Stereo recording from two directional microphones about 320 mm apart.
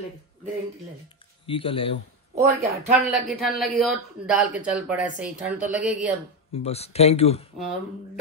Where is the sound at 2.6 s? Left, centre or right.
Centre.